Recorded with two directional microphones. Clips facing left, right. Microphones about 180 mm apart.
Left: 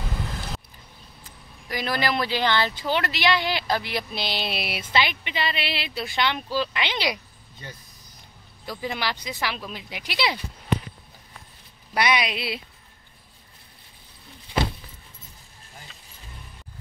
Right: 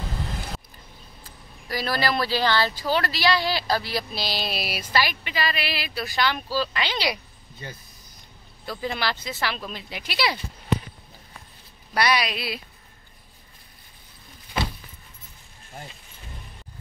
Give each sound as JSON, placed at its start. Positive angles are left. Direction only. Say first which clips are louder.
{"t": 1.7, "sound": "speech", "louder": "even", "side_deg": 15}
{"t": 8.6, "sound": "speech", "louder": "right 1 dB", "side_deg": 15}
{"t": 11.9, "sound": "speech", "louder": "even", "side_deg": 20}